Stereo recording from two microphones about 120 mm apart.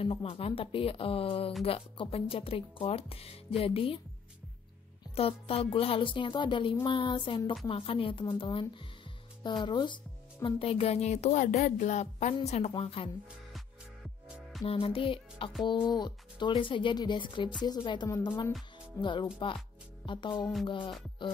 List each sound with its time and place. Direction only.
0.0 s speech: 55° left (ahead or behind)
5.1 s speech: 55° left (ahead or behind)
10.4 s speech: 55° left (ahead or behind); by 12.4 s 75° left (ahead or behind)
12.4 s a woman's voice: 65° left (ahead or behind)
14.6 s music: 50° left (ahead or behind)
15.6 s speech: 40° left (ahead or behind)